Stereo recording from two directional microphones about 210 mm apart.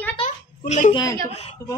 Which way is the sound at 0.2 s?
35° left (ahead or behind).